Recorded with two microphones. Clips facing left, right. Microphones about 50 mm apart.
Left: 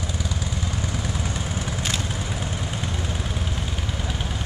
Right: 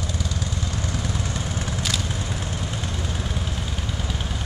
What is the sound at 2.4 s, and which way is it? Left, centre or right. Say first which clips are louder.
Vehicle: left 1 dB; centre.